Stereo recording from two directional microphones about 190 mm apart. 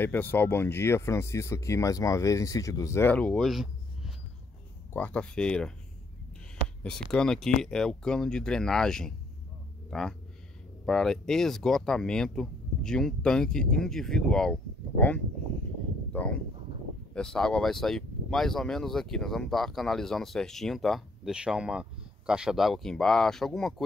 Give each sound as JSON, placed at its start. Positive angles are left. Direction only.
{"t": 0.0, "sound": "speech", "side_deg": 10}
{"t": 6.8, "sound": "speech", "side_deg": 5}